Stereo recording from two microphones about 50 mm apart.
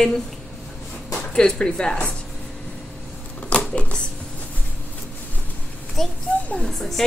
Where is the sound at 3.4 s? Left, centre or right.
Left.